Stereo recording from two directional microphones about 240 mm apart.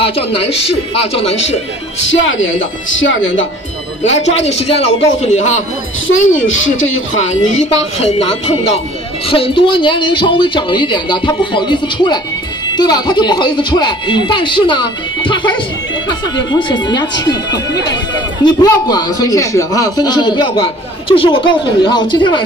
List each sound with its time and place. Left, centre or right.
0.0 s speech: left
2.0 s a man's voice: left
4.0 s speech: left
6.0 s a woman's voice: left
8.0 s speech: left